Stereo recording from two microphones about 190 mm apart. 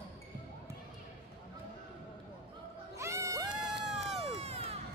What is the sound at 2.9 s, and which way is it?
Music, 15° right (ahead or behind).